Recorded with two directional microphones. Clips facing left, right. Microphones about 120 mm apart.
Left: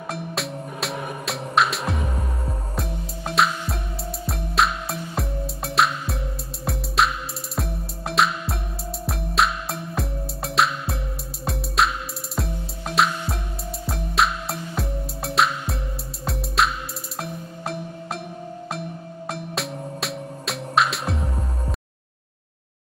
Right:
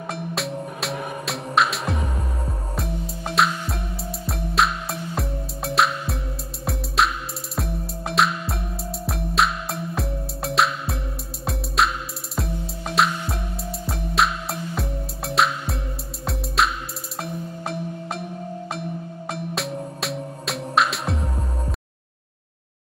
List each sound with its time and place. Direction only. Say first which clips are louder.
0.1 s music: right 1 dB; centre (ahead or behind)